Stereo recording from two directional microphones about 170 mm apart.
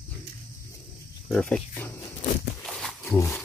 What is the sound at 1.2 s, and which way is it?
Wild animals, 5° left (ahead or behind).